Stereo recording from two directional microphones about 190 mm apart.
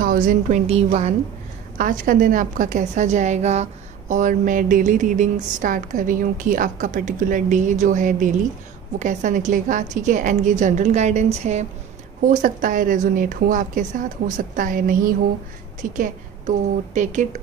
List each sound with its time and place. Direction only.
0.0 s a woman's voice: 45° right (ahead or behind)
1.8 s a woman's voice: 45° right (ahead or behind)